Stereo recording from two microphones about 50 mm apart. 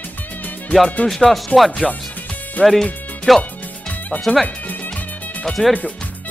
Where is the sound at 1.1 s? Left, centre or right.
Centre.